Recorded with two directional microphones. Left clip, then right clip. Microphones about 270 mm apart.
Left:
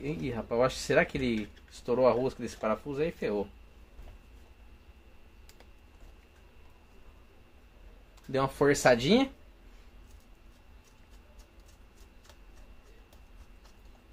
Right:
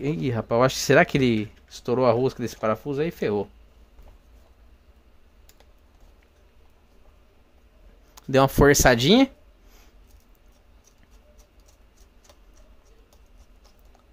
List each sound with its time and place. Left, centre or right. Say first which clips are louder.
0.0 s speech: right 8 dB; right
8.1 s speech: right 11 dB; right